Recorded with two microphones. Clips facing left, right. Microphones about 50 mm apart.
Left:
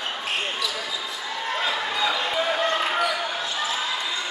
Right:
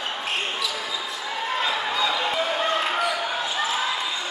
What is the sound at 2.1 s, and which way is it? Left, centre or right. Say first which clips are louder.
Basketball bounce: even; centre.